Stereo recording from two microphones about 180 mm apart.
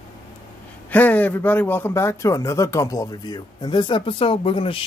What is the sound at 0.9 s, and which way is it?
Speech, 10° left (ahead or behind).